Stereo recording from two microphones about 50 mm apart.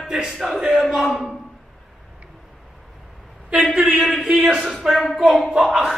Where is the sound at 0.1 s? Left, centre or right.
Centre.